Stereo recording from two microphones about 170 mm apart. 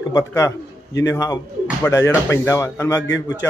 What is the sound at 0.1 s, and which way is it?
A man's voice, 15° left (ahead or behind).